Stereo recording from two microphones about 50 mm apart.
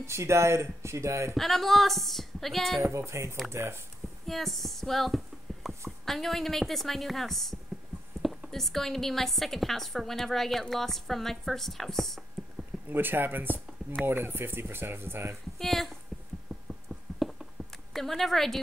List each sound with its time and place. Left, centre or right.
0.0 s speech: right
1.3 s a woman's voice: centre
2.9 s speech: right
4.3 s a woman's voice: centre
12.9 s speech: right
15.6 s a woman's voice: centre
17.2 s a sound: centre
17.9 s a woman's voice: centre